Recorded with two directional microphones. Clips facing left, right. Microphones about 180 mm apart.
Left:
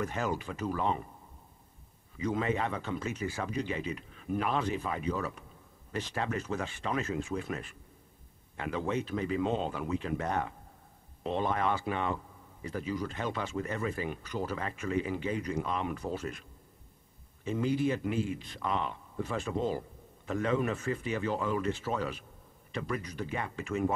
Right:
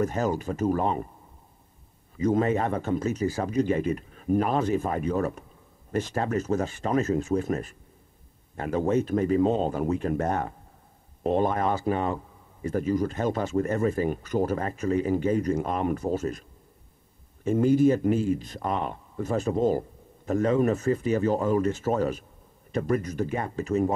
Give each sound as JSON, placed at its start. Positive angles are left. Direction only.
{"t": 0.0, "sound": "speech", "side_deg": -40}
{"t": 2.1, "sound": "speech", "side_deg": -45}